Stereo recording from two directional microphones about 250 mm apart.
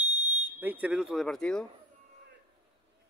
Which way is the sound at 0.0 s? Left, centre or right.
Right.